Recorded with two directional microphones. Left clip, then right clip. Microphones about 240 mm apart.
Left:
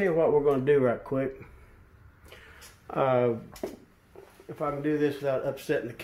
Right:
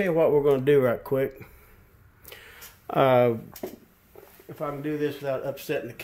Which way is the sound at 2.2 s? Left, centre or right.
Right.